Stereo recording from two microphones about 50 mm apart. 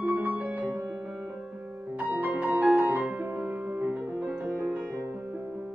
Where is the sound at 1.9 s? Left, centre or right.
Right.